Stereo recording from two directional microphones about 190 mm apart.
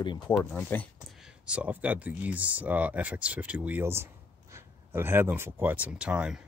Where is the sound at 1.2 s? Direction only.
5° right (ahead or behind).